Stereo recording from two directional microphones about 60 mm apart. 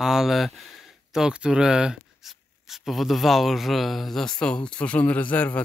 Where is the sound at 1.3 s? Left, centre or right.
Centre.